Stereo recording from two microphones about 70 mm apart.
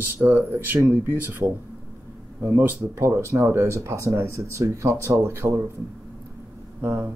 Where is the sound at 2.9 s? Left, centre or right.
Right.